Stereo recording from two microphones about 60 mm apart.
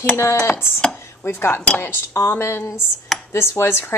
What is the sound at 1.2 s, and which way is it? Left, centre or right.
A woman's voice, left.